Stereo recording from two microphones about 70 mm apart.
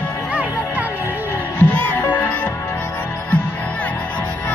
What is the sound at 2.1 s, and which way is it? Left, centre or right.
Music, left.